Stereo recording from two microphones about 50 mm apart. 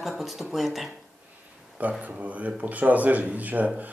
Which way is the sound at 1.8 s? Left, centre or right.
Right.